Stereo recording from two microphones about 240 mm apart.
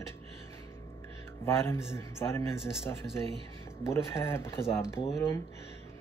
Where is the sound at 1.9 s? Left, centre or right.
Centre.